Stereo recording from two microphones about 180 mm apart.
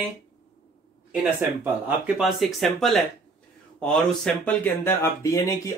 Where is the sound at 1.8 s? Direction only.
5° right (ahead or behind).